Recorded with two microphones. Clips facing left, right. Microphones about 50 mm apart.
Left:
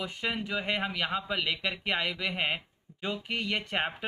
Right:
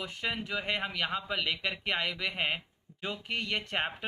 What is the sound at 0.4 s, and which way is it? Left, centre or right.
Speech, centre.